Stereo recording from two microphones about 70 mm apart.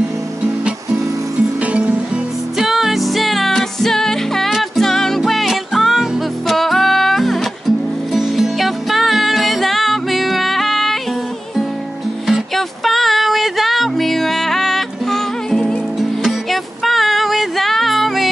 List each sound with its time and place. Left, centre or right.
1.7 s music: centre
2.6 s music: centre
12.3 s music: centre